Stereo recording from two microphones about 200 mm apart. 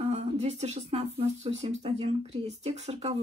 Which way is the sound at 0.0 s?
30° right (ahead or behind).